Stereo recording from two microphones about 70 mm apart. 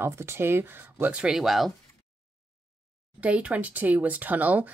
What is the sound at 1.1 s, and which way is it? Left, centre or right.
Speech, centre.